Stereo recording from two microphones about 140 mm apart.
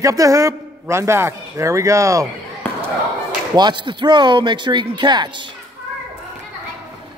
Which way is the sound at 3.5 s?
30° right (ahead or behind).